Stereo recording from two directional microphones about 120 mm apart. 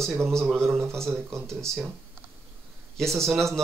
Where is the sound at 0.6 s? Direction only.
20° right (ahead or behind).